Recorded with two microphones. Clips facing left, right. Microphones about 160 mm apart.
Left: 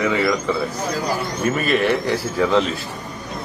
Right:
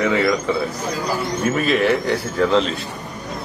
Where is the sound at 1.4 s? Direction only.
Centre (ahead or behind).